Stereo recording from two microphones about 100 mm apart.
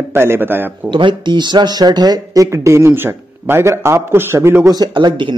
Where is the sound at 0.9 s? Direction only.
50° right (ahead or behind); by 4.7 s 25° right (ahead or behind).